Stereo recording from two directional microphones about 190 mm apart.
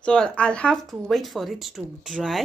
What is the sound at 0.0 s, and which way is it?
Speech, 5° left (ahead or behind).